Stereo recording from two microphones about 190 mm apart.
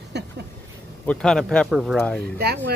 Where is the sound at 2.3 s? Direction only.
55° right (ahead or behind).